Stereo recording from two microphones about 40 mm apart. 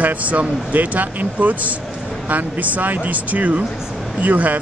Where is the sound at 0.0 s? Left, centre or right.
Right.